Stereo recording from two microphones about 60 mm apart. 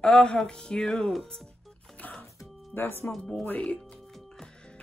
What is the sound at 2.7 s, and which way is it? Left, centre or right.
Speech, left.